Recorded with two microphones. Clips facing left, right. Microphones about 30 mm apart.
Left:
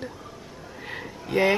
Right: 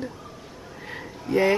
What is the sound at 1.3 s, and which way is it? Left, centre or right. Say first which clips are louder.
Speech: right 1 dB; left.